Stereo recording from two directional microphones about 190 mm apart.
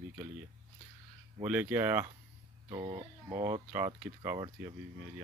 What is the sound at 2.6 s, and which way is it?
Speech, 30° right (ahead or behind).